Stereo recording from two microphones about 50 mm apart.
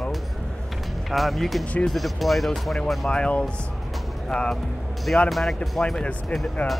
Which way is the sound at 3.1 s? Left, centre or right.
Centre.